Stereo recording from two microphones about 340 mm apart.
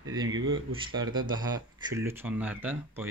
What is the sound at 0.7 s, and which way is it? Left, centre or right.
Speech, centre.